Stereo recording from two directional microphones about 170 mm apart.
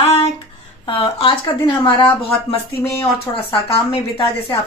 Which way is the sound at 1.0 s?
30° left (ahead or behind).